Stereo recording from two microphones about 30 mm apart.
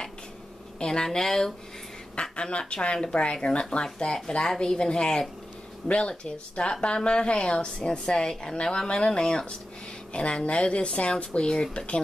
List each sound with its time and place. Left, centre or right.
0.7 s speech: left
2.3 s a woman's voice: left
4.0 s a woman's voice: left
4.4 s a woman's voice: left
10.1 s a woman's voice: left